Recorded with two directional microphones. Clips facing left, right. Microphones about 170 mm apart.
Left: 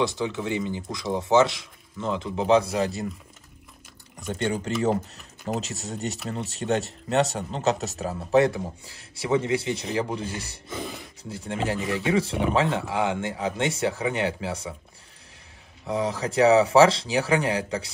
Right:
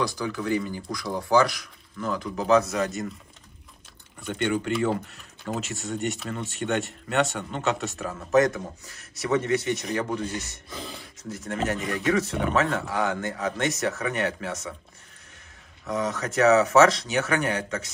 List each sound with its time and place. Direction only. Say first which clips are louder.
0.0 s speech: left 2 dB; 25° left (ahead or behind)
4.2 s speech: right 1 dB; 35° left (ahead or behind)
10.7 s speech: left 5 dB; centre (ahead or behind)
11.2 s speech: even; 30° left (ahead or behind)
15.8 s speech: left 1 dB; 30° left (ahead or behind)